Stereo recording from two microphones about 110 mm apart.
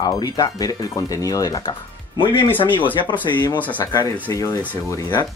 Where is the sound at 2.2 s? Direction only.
50° left (ahead or behind).